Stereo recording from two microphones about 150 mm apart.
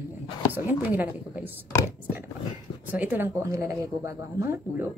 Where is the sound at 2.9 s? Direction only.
10° right (ahead or behind).